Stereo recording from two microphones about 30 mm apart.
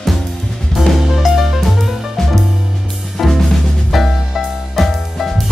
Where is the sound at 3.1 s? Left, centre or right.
Centre.